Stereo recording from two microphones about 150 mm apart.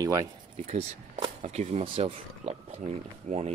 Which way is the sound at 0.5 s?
50° right (ahead or behind).